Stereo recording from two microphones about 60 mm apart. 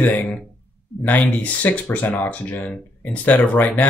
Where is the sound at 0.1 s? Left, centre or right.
Left.